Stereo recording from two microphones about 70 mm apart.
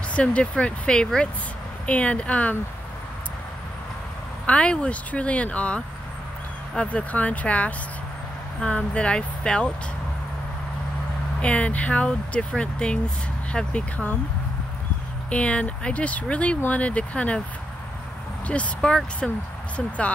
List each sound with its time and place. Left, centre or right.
0.1 s speech: centre
4.5 s speech: centre
11.4 s speech: centre
15.2 s speech: centre
18.5 s speech: centre